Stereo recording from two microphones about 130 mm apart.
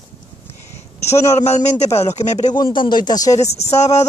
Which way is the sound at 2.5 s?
40° left (ahead or behind).